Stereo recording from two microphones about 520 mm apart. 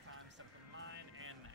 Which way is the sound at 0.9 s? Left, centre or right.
Right.